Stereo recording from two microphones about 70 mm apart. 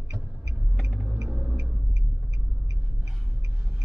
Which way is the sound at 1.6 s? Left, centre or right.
Right.